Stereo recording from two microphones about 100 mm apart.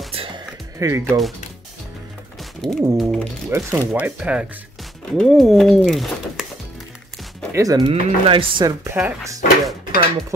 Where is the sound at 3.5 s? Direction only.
30° right (ahead or behind).